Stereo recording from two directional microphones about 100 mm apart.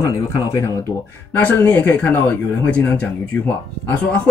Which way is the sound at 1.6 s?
20° left (ahead or behind).